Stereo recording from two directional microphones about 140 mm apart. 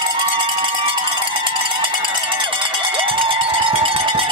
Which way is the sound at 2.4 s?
40° right (ahead or behind).